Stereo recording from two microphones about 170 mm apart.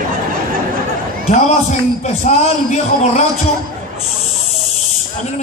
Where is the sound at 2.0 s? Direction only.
45° left (ahead or behind).